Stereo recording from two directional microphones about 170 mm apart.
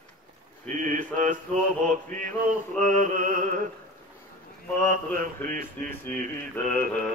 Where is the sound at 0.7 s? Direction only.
50° right (ahead or behind).